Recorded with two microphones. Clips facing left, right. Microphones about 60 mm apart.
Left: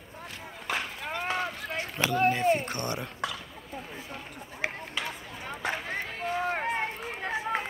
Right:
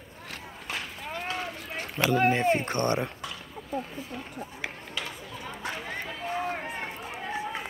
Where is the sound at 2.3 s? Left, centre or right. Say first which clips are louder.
Right 1 dB; right.